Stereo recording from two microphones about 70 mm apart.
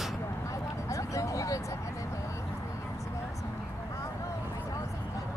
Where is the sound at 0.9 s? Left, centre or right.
Left.